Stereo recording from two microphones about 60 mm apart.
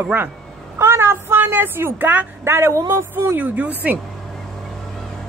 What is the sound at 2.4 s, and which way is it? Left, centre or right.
Speech, right.